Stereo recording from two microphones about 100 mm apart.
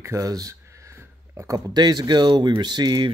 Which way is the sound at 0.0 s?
30° right (ahead or behind).